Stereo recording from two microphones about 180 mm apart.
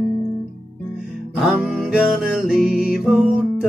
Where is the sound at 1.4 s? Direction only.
Centre (ahead or behind).